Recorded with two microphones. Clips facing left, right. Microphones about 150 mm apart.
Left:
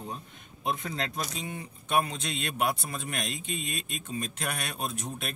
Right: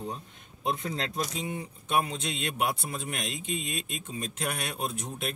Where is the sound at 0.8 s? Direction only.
25° right (ahead or behind).